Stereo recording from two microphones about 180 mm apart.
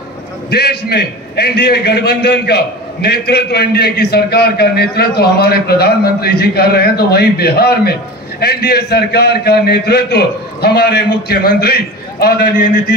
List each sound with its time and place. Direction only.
0.5 s a man's voice: 60° left (ahead or behind)